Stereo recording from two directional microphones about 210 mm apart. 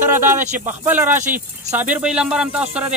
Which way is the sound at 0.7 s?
10° right (ahead or behind).